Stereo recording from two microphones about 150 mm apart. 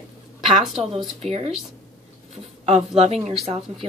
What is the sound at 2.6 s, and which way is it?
Speech, 45° right (ahead or behind).